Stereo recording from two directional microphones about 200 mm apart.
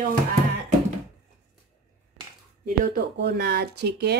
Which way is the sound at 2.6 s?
45° right (ahead or behind).